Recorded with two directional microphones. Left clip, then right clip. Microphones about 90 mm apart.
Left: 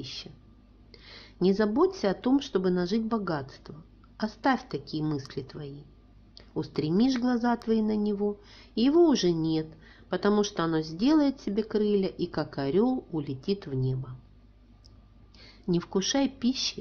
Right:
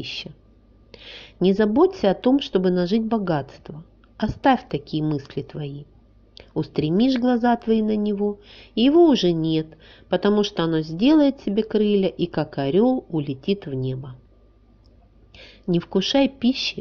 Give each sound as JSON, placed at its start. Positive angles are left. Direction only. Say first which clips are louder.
{"t": 0.0, "sound": "speech", "louder": "right 8 dB", "side_deg": -40}
{"t": 6.3, "sound": "a sound", "louder": "right 7 dB", "side_deg": -30}
{"t": 7.0, "sound": "speech", "louder": "right 7 dB", "side_deg": -25}
{"t": 15.7, "sound": "speech", "louder": "right 7 dB", "side_deg": -25}